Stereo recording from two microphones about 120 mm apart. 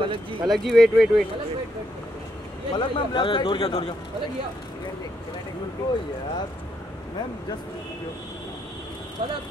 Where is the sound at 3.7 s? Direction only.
55° left (ahead or behind).